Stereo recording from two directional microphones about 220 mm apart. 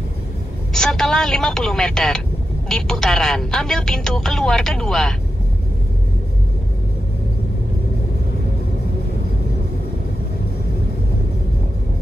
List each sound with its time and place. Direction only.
0.7 s speech: 5° left (ahead or behind)